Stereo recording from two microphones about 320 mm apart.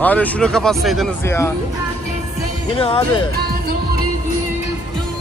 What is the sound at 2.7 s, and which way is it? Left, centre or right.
Speech, centre.